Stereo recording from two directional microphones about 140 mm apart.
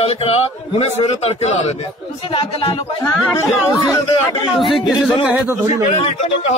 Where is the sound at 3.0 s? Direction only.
20° left (ahead or behind).